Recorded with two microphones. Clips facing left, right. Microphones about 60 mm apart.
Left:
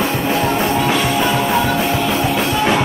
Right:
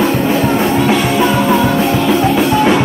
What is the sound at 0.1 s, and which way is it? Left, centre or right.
Music, centre.